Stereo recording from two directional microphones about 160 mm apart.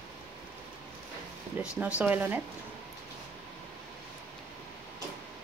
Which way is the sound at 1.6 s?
5° right (ahead or behind).